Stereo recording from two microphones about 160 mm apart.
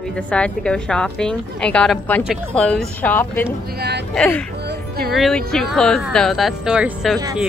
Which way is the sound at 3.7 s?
90° right.